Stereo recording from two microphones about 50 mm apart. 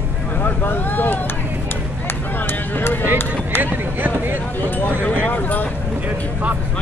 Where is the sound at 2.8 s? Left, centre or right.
Left.